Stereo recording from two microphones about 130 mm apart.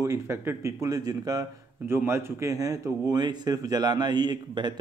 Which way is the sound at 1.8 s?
15° right (ahead or behind).